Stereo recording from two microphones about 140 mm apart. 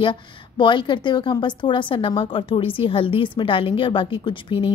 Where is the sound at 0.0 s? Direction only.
35° left (ahead or behind).